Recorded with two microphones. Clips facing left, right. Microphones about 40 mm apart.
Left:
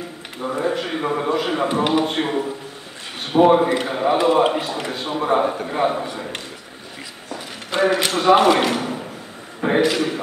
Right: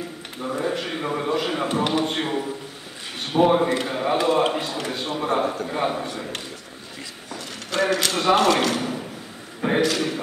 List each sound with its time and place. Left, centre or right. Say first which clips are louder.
0.4 s a man's voice: left 3 dB; centre
7.3 s a sound: left 3 dB; left
8.1 s a man's voice: left 7 dB; centre
8.4 s a man's voice: left 3 dB; centre